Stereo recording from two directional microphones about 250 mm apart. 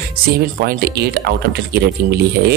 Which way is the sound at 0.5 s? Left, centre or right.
Right.